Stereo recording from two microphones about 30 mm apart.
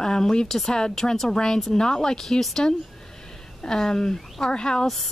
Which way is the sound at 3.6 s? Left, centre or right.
Left.